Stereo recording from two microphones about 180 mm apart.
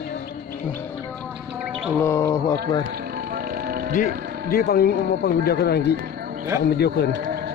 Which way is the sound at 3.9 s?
55° left (ahead or behind).